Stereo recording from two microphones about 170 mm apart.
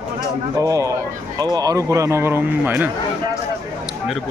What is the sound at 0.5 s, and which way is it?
Speech, 20° right (ahead or behind).